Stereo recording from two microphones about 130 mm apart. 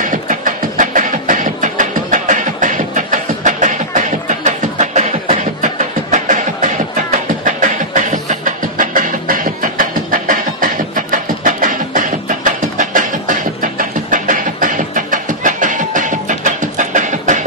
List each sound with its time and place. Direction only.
0.0 s beatboxing: 90° right; by 17.5 s 75° right (ahead or behind)